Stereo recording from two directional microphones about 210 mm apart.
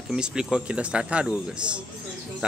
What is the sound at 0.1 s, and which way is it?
Speech, 5° right (ahead or behind).